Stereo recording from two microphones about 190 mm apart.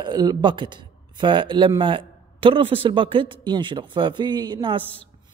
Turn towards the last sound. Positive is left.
turn(degrees=-25)  # may be behind; listen again after turning